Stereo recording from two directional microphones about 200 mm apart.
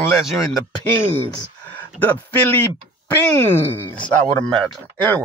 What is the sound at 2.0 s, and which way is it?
Speech, 10° left (ahead or behind).